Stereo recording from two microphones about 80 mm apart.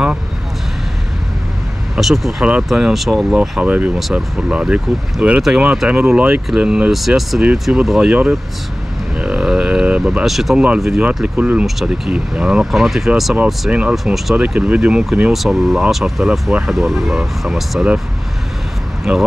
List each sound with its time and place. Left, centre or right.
2.0 s speech: centre
2.4 s speech: centre
9.2 s a sound: centre
10.2 s speech: centre
11.3 s speech: centre
13.9 s speech: centre
14.3 s speech: centre
15.3 s speech: centre
19.1 s speech: centre